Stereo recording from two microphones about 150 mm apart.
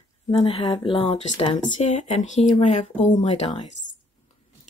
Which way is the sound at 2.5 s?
40° left (ahead or behind).